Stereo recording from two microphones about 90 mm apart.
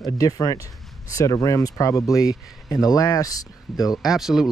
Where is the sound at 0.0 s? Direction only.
40° left (ahead or behind).